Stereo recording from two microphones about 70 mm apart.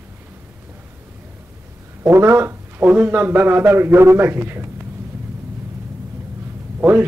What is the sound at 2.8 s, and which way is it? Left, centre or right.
A man's voice, right.